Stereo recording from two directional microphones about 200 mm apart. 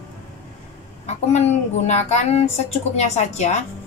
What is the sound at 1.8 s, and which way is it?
Speech, 35° left (ahead or behind).